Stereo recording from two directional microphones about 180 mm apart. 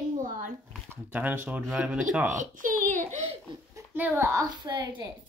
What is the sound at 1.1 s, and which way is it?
Speech, 10° right (ahead or behind).